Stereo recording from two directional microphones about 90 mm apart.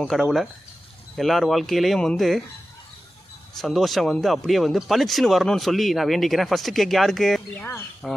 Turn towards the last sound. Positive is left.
turn(degrees=25)  # may be behind; listen again after turning